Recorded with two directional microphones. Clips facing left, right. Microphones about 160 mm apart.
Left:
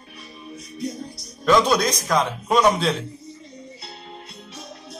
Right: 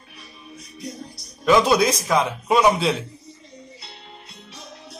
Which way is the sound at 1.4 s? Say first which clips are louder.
Right 1 dB; 5° right (ahead or behind).